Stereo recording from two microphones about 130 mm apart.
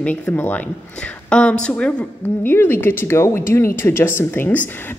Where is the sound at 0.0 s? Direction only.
10° left (ahead or behind).